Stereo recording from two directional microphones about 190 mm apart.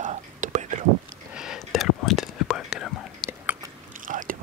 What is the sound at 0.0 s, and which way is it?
Whispering, 40° right (ahead or behind).